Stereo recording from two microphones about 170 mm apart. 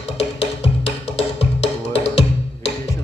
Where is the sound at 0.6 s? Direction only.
90° left.